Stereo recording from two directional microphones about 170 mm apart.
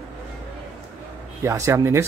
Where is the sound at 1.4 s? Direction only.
15° right (ahead or behind).